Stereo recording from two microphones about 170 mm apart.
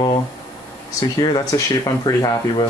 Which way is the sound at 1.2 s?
20° left (ahead or behind).